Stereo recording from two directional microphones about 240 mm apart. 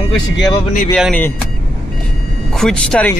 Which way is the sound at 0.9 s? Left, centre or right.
Centre.